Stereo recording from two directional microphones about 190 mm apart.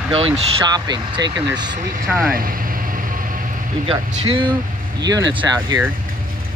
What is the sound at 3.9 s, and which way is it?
Speech, 30° right (ahead or behind).